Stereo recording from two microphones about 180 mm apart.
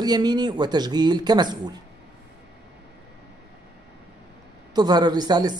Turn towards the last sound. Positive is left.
turn(degrees=-25)  # may be behind; listen again after turning